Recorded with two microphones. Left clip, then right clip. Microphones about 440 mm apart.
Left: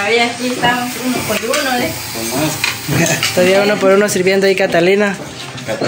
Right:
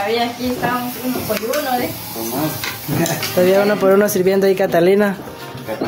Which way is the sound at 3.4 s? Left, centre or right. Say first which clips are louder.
Left 1 dB; right.